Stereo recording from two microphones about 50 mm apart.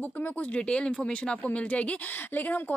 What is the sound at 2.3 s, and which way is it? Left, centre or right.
Speech, left.